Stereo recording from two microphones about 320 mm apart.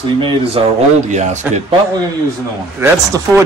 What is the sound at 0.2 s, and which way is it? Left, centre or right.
Speech, centre.